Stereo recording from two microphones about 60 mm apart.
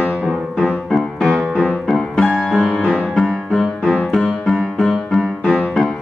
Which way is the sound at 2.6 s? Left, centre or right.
Centre.